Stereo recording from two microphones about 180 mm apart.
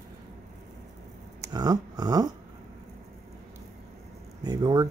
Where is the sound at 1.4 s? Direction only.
20° right (ahead or behind).